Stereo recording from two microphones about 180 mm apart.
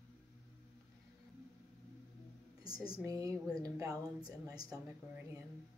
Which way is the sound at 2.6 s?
20° right (ahead or behind).